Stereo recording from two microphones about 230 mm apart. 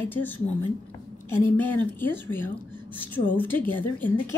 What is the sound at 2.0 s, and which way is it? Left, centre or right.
A woman's voice, centre.